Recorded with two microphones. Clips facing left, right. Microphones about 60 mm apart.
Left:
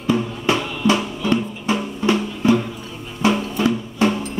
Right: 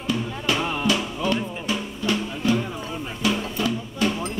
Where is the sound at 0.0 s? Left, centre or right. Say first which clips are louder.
Left 6 dB; left.